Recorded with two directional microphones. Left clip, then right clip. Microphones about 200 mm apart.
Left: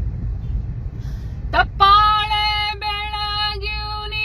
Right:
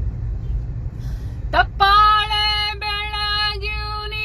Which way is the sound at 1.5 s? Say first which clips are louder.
Left 2 dB; 10° right (ahead or behind).